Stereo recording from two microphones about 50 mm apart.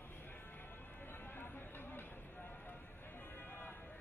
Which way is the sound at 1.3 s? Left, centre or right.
Left.